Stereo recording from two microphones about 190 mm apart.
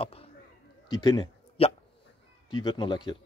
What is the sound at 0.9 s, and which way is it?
Speech, 20° left (ahead or behind).